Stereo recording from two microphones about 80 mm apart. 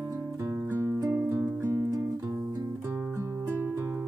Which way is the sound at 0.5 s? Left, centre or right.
Right.